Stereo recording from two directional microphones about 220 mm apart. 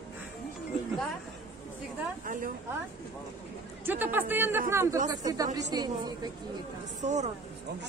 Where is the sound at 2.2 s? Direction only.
35° right (ahead or behind).